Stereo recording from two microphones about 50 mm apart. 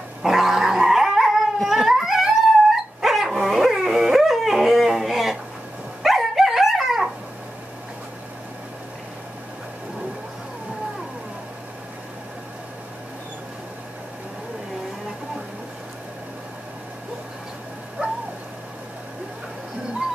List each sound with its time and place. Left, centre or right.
0.2 s dog: centre
18.0 s dog: right